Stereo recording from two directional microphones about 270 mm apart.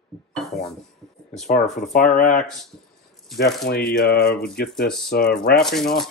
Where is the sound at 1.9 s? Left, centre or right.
Left.